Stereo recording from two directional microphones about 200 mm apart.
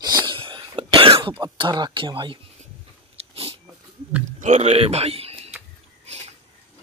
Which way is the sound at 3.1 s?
30° right (ahead or behind).